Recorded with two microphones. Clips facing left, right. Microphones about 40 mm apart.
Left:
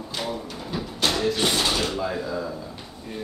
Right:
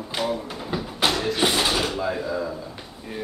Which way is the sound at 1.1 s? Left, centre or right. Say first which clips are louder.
Left 1 dB; centre.